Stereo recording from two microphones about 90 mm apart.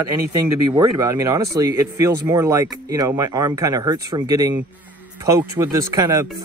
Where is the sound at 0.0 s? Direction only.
35° right (ahead or behind).